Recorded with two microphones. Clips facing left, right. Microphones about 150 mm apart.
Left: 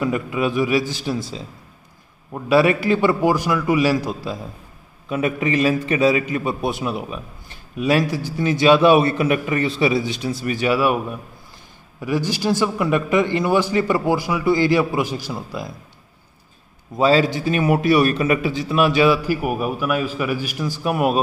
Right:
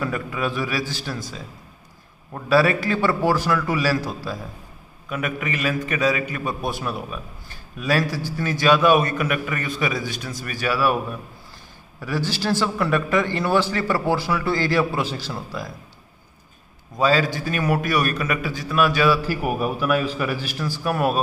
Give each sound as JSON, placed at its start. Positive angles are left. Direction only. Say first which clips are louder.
{"t": 0.0, "sound": "a man's voice", "louder": "left 4 dB", "side_deg": 20}
{"t": 16.9, "sound": "a man's voice", "louder": "left 4 dB", "side_deg": 25}
{"t": 19.2, "sound": "a man's voice", "louder": "left 2 dB", "side_deg": 5}